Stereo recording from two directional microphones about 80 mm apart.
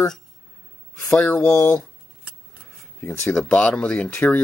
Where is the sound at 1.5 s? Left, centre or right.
Left.